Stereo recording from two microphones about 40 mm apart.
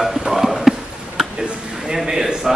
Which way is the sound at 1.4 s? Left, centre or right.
Centre.